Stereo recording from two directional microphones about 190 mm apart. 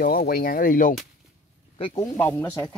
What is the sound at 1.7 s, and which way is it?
Speech, 25° left (ahead or behind).